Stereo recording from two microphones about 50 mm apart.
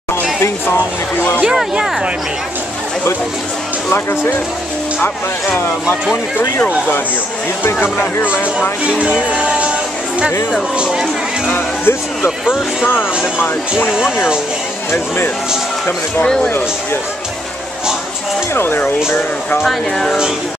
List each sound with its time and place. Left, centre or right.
0.1 s a sound: left
3.9 s speech: left
7.6 s speech: left
8.8 s speech: right
9.4 s music: right
10.8 s speech: centre
11.4 s speech: left
14.9 s speech: left
18.5 s speech: left
19.6 s speech: centre